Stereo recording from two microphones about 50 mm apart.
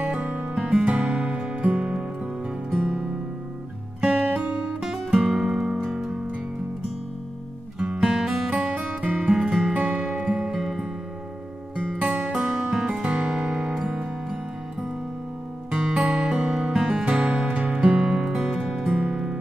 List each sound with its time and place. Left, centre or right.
0.0 s music: centre
4.0 s music: right
4.8 s music: centre
7.8 s music: centre
8.5 s music: right
9.3 s music: centre
9.8 s music: right; by 10.9 s centre
11.7 s music: centre
12.1 s music: centre
12.8 s music: right
17.8 s music: centre